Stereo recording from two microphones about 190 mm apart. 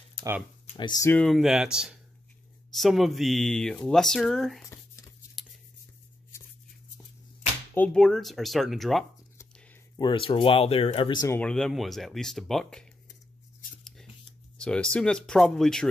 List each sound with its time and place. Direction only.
0.7 s speech: 25° left (ahead or behind)
1.1 s speech: centre (ahead or behind)
5.4 s a sound: centre (ahead or behind)
7.7 s speech: 5° left (ahead or behind)
9.4 s speech: 20° left (ahead or behind)
11.3 s speech: 5° left (ahead or behind)
14.6 s speech: 5° left (ahead or behind)